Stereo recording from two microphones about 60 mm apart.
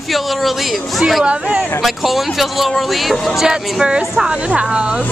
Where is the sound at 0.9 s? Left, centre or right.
Centre.